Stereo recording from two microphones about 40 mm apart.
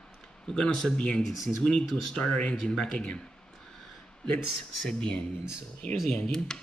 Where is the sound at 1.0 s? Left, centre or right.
Left.